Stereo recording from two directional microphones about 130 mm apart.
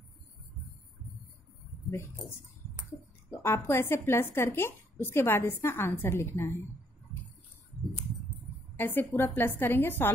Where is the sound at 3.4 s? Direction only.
20° left (ahead or behind).